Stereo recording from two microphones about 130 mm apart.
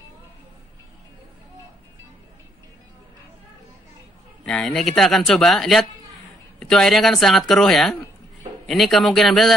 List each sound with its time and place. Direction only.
4.5 s speech: 5° left (ahead or behind)